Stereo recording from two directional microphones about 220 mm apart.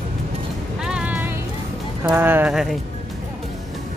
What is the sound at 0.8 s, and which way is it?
Music, 5° right (ahead or behind).